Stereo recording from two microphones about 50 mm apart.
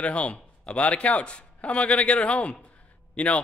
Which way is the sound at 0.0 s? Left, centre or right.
Left.